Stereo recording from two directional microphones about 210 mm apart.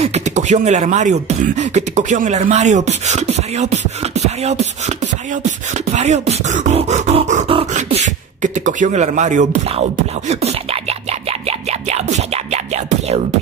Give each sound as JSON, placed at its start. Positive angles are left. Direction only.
{"t": 0.0, "sound": "speech", "side_deg": -35}
{"t": 5.9, "sound": "beatboxing", "side_deg": -35}